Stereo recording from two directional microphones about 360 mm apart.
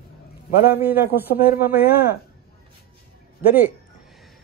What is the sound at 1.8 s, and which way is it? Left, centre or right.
Speech, left.